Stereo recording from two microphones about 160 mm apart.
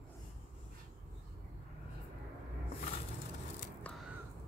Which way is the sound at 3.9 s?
10° left (ahead or behind).